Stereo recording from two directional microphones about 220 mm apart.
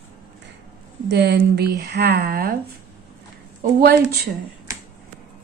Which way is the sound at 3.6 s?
45° right (ahead or behind).